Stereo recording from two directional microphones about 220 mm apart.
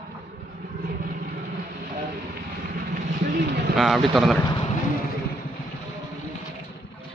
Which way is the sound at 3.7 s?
Centre (ahead or behind).